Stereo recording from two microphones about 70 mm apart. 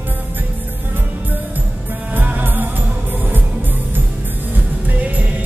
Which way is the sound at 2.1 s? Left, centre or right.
Right.